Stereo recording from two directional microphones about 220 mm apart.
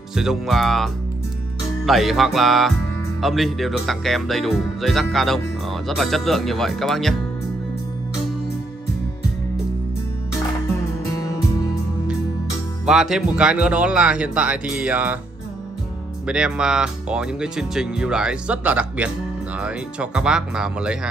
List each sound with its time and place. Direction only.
0.1 s speech: centre (ahead or behind)
12.8 s speech: centre (ahead or behind)
16.3 s speech: 5° right (ahead or behind)